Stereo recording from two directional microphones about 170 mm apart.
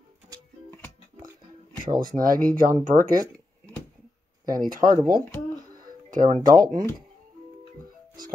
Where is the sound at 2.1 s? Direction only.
55° right (ahead or behind).